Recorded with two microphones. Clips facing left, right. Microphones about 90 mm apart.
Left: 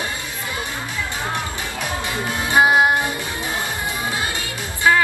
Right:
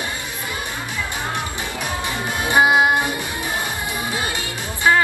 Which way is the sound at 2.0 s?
20° right (ahead or behind).